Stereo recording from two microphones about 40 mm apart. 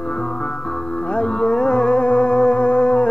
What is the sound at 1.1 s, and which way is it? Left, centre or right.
Music, left.